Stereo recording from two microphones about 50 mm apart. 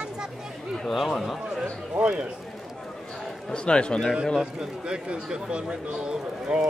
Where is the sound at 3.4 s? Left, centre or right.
Centre.